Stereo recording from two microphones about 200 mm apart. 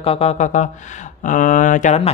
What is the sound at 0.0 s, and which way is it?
Speech, 30° left (ahead or behind).